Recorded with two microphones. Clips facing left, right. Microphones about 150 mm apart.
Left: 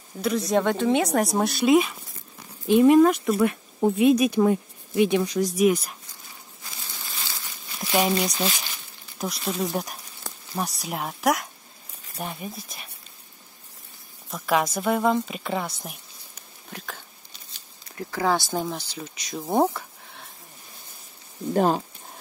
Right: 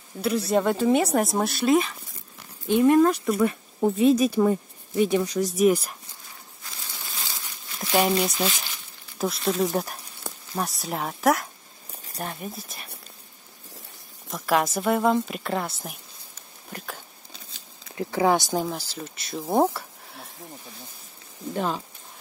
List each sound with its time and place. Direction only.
0.2 s speech: 5° right (ahead or behind)
7.9 s speech: centre (ahead or behind)
14.3 s speech: centre (ahead or behind)
16.7 s a sound: 10° right (ahead or behind)
17.9 s speech: 20° right (ahead or behind); by 20.2 s centre (ahead or behind)
21.5 s speech: 45° left (ahead or behind)